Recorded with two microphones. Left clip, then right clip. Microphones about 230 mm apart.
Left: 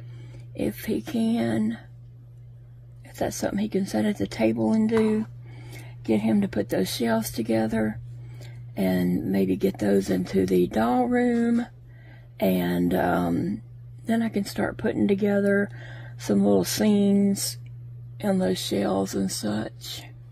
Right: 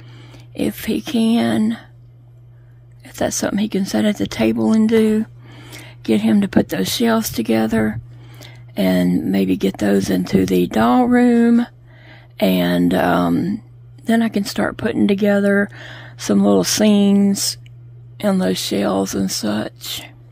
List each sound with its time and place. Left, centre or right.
0.6 s speech: right
3.1 s speech: right